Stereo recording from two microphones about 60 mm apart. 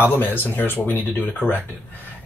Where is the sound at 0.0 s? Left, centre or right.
Left.